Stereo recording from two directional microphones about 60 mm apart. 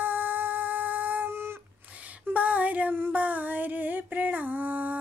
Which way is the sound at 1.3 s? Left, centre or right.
Right.